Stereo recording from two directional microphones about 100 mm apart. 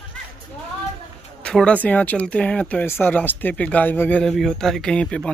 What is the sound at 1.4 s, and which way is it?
Speech, 10° left (ahead or behind).